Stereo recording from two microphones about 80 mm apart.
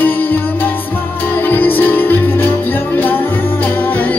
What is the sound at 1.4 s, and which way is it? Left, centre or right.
Music, left.